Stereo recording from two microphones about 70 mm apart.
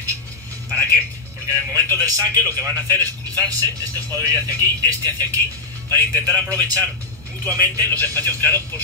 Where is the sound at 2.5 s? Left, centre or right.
Right.